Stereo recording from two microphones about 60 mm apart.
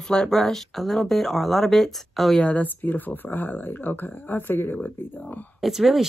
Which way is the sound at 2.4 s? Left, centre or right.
Left.